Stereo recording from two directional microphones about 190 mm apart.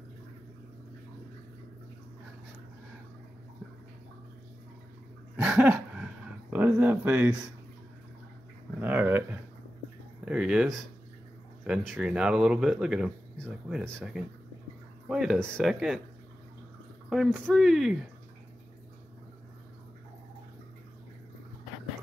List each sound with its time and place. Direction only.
5.3 s dog: 5° right (ahead or behind)
6.5 s a sound: 10° right (ahead or behind)
8.8 s dog: 10° right (ahead or behind)
10.2 s a sound: 5° right (ahead or behind)
11.6 s speech: centre (ahead or behind)
17.1 s speech: centre (ahead or behind)